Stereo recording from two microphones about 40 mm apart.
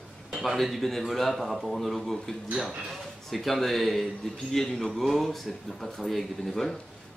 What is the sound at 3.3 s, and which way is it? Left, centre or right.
Speech, centre.